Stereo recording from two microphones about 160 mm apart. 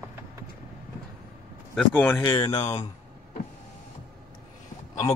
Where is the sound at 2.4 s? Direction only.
40° left (ahead or behind).